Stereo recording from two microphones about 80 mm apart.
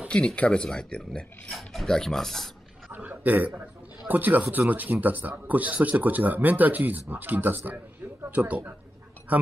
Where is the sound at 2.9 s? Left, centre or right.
Right.